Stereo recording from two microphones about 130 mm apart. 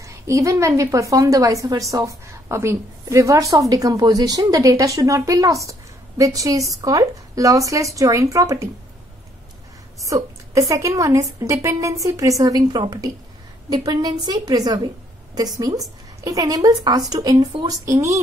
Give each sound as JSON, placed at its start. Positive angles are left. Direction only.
{"t": 0.0, "sound": "a woman's voice", "side_deg": -25}
{"t": 10.0, "sound": "a woman's voice", "side_deg": -25}